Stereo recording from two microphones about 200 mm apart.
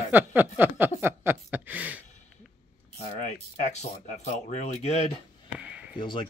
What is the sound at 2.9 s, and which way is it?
Speech, 35° left (ahead or behind).